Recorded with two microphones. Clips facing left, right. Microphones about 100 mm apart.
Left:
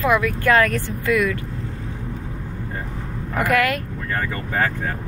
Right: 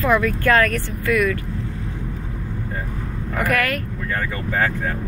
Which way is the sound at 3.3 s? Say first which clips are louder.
Left 2 dB; 20° left (ahead or behind).